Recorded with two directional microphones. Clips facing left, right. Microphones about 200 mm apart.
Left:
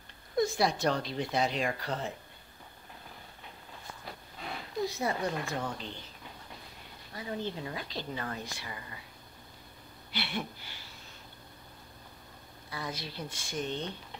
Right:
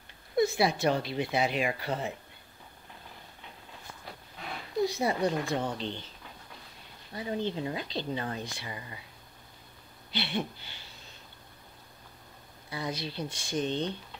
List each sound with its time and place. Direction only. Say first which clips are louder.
0.4 s speech: right 2 dB; 5° right (ahead or behind)
5.0 s speech: right 4 dB; 15° right (ahead or behind)
7.2 s speech: right 4 dB; 20° right (ahead or behind)
10.1 s speech: right 4 dB; 25° right (ahead or behind)
12.6 s speech: right 4 dB; 20° right (ahead or behind)